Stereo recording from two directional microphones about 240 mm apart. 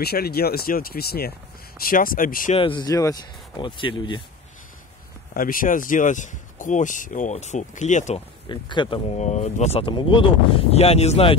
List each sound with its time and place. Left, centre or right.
0.0 s speech: left
2.6 s speech: centre
5.3 s speech: left